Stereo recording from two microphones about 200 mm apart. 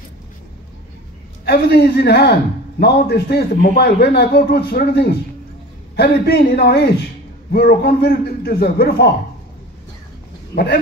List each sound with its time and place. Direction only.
1.4 s a man's voice: 55° left (ahead or behind)
10.5 s speech: 50° left (ahead or behind)